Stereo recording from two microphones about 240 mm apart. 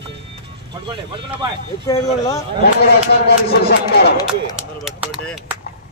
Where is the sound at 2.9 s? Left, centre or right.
Left.